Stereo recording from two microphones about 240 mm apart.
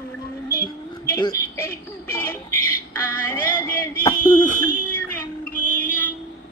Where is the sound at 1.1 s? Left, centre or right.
Centre.